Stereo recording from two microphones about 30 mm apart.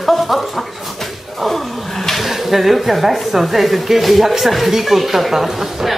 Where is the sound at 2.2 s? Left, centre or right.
Centre.